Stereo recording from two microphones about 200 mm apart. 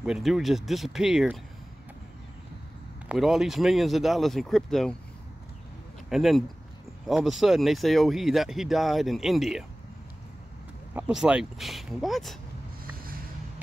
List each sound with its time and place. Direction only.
0.0 s speech: centre (ahead or behind)
3.1 s speech: centre (ahead or behind)
6.0 s speech: centre (ahead or behind)
11.0 s speech: 5° right (ahead or behind)
12.9 s a sound: 45° right (ahead or behind)